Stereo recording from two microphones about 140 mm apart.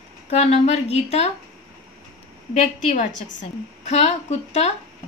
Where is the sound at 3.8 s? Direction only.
50° left (ahead or behind).